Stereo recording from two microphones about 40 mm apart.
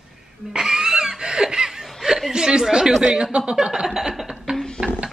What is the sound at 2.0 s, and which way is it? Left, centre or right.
Speech, centre.